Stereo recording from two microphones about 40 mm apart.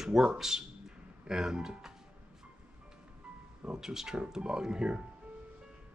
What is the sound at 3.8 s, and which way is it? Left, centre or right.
Speech, centre.